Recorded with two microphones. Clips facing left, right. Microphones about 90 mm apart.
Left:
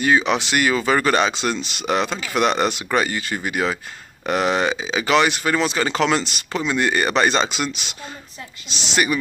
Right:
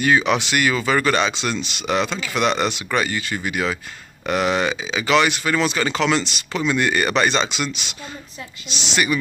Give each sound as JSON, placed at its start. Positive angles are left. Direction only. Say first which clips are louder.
{"t": 0.0, "sound": "speech", "louder": "even", "side_deg": 25}
{"t": 6.6, "sound": "speech", "louder": "right 1 dB", "side_deg": 25}